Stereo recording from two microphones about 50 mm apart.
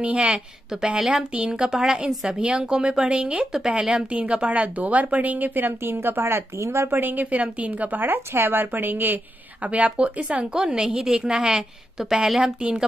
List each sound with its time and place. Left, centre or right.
0.0 s a woman's voice: right
6.5 s speech: right
7.0 s speech: right
9.7 s a woman's voice: right